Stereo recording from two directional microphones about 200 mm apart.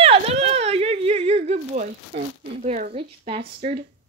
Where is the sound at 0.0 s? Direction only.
30° right (ahead or behind).